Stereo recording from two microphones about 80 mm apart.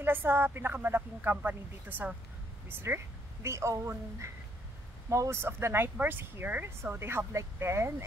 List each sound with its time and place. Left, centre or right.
0.0 s speech: right
5.4 s speech: right